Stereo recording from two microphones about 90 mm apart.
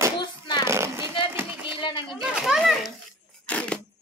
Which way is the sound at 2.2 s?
5° right (ahead or behind).